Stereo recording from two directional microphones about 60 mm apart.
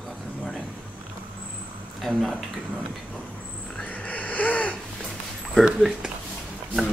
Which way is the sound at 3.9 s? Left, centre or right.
Left.